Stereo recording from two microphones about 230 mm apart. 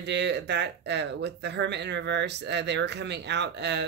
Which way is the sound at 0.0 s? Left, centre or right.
Right.